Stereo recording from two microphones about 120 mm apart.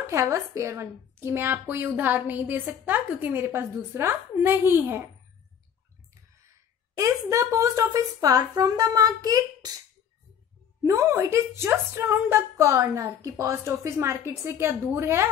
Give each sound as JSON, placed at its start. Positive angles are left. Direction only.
{"t": 0.0, "sound": "a woman's voice", "side_deg": -25}
{"t": 7.0, "sound": "a woman's voice", "side_deg": -25}
{"t": 10.8, "sound": "a woman's voice", "side_deg": -25}